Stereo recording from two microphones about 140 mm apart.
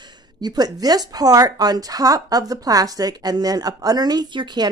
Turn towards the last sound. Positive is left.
turn(degrees=-35)  # may be behind; listen again after turning